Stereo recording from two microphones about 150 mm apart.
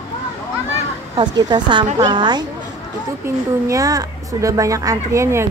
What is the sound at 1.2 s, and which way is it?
A woman's voice, 30° right (ahead or behind).